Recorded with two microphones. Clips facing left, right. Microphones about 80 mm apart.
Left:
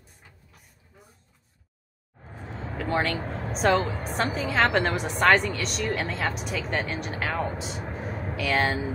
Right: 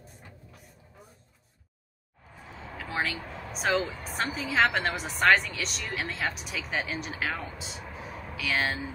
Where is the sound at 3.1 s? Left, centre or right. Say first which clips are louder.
Left 7 dB; left.